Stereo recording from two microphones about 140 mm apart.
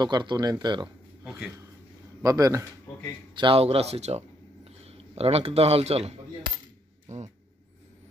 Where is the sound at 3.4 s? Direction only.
40° right (ahead or behind).